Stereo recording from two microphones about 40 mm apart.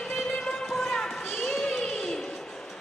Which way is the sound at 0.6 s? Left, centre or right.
Centre.